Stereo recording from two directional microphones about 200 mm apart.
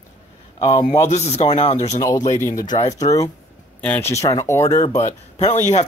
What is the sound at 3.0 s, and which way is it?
Speech, 15° left (ahead or behind).